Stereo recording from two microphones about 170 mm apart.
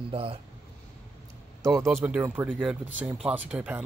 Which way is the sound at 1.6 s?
15° right (ahead or behind).